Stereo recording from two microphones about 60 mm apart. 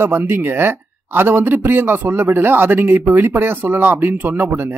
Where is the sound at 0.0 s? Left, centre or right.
Right.